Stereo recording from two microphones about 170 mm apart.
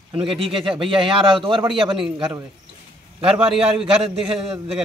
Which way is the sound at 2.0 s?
5° right (ahead or behind).